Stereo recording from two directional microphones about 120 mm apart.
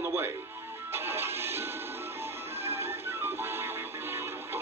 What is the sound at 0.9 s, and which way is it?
Music, 20° right (ahead or behind).